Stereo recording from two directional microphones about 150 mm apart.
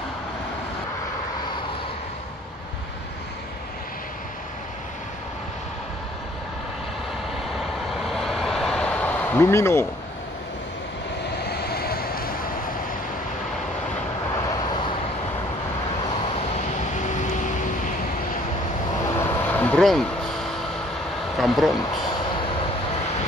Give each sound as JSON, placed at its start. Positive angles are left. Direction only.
{"t": 8.1, "sound": "vehicle", "side_deg": 0}
{"t": 11.4, "sound": "vehicle", "side_deg": 90}
{"t": 14.3, "sound": "vehicle", "side_deg": 25}
{"t": 16.9, "sound": "vehicle", "side_deg": 55}
{"t": 19.1, "sound": "vehicle", "side_deg": 15}
{"t": 21.4, "sound": "a sound", "side_deg": 0}
{"t": 21.8, "sound": "a sound", "side_deg": 30}